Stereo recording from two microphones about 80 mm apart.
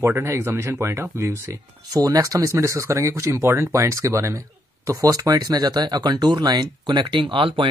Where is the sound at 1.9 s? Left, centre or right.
Right.